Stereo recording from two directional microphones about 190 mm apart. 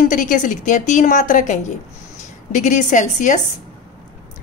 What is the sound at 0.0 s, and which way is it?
A woman's voice, 45° left (ahead or behind).